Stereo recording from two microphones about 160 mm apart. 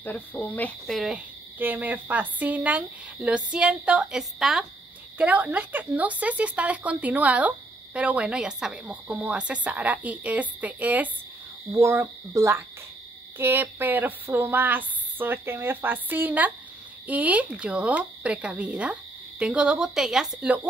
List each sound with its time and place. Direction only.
0.0 s speech: 10° left (ahead or behind); by 20.6 s 5° right (ahead or behind)